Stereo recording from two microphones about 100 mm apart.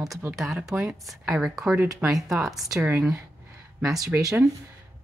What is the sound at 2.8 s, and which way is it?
Speech, 15° right (ahead or behind).